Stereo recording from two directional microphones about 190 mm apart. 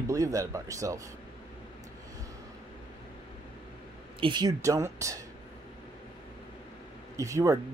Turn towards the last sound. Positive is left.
turn(degrees=-15)  # may be behind; listen again after turning